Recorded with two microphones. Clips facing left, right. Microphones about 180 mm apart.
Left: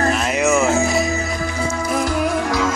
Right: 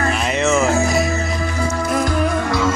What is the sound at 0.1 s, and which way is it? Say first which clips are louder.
Music: even; 5° left (ahead or behind).